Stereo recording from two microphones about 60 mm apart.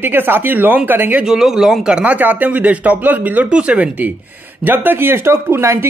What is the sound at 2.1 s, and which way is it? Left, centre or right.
Speech, right.